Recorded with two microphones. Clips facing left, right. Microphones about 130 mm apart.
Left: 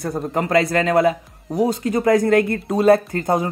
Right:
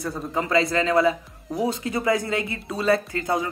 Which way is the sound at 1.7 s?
45° left (ahead or behind).